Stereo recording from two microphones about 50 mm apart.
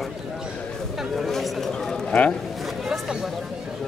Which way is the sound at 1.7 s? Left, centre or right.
Centre.